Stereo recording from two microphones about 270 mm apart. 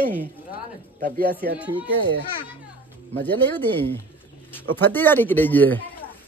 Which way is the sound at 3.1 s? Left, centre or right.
Centre.